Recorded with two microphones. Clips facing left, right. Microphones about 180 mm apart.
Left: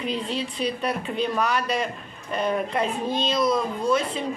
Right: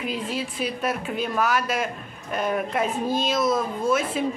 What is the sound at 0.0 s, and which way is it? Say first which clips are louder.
Speech: left 1 dB; 5° right (ahead or behind).